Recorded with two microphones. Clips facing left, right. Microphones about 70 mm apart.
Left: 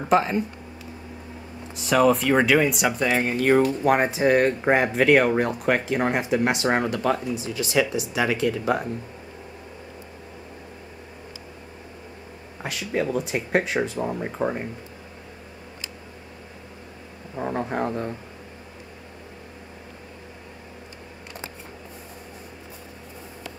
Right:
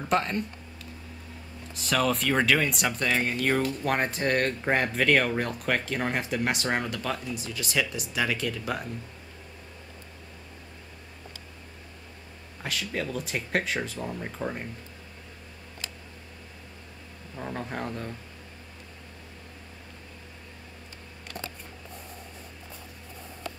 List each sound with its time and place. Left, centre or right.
0.1 s speech: centre
1.8 s speech: centre
7.3 s speech: centre
12.6 s speech: centre
14.0 s speech: left
17.4 s speech: left
17.7 s speech: centre